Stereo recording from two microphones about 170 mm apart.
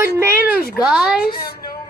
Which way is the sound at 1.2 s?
65° left (ahead or behind).